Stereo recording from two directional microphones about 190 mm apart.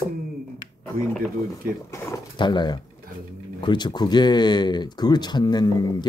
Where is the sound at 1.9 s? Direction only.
20° left (ahead or behind).